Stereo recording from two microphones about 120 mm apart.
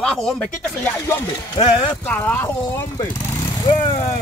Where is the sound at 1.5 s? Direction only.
40° left (ahead or behind).